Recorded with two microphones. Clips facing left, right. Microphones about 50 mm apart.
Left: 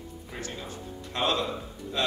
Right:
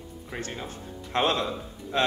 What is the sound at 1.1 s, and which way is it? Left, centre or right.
Speech, right.